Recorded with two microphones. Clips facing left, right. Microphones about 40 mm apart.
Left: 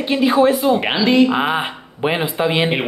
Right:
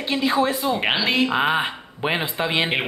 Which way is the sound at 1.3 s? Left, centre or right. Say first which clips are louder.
Left 2 dB; centre.